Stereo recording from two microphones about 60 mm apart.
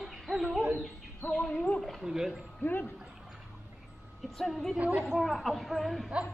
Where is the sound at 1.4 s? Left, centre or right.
Left.